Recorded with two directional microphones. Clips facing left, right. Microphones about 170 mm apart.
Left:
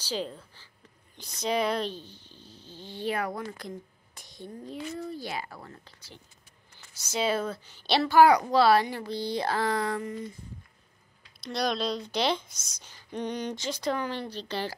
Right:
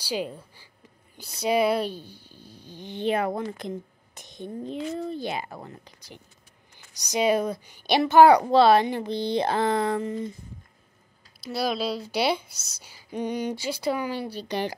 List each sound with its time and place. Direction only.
0.0 s a woman's voice: 10° right (ahead or behind)
11.4 s speech: 5° right (ahead or behind)